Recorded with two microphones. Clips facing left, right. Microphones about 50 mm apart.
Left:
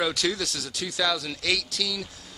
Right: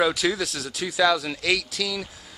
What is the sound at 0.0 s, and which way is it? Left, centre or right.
Speech, centre.